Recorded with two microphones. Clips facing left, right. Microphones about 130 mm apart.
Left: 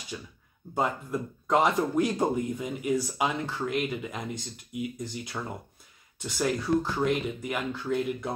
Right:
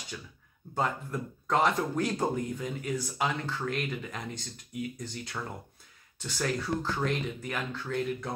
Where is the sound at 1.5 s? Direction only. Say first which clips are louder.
Left 3 dB; 20° left (ahead or behind).